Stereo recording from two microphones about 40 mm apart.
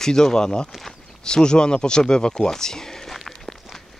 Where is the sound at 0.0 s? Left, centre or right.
Centre.